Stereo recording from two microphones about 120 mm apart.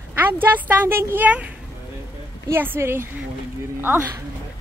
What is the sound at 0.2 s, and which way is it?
Speech, 15° right (ahead or behind).